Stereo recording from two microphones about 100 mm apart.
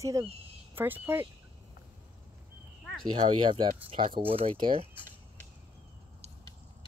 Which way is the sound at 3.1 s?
55° right (ahead or behind).